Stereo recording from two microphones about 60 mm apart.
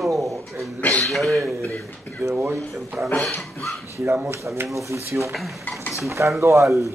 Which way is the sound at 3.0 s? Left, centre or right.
Right.